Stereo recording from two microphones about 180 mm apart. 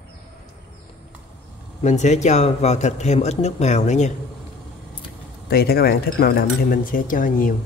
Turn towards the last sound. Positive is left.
turn(degrees=50)  # may be behind; listen again after turning